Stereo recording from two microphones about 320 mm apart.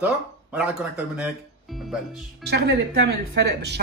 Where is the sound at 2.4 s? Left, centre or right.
Right.